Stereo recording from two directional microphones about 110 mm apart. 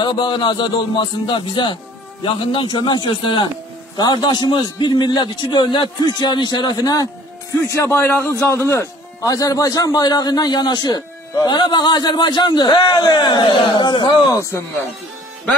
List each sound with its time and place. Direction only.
0.0 s a man's voice: 45° left (ahead or behind)
7.6 s a man's voice: 25° left (ahead or behind); by 14.1 s 45° left (ahead or behind)
14.3 s a man's voice: 25° left (ahead or behind)